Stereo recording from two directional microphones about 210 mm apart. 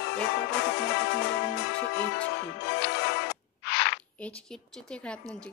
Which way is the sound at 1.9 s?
50° left (ahead or behind).